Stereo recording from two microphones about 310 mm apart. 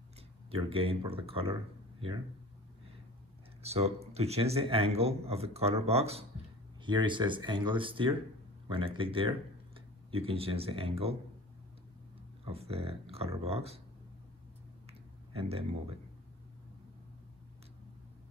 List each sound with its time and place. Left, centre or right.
0.5 s speech: centre
3.6 s speech: centre
12.4 s speech: centre
15.3 s speech: centre